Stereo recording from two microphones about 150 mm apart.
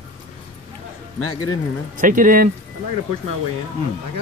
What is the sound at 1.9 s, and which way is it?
Speech, 65° right (ahead or behind).